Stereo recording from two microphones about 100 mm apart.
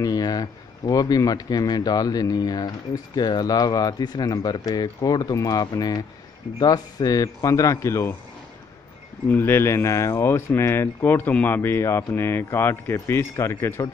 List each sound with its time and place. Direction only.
0.0 s a man's voice: 40° left (ahead or behind)
9.3 s speech: 25° left (ahead or behind)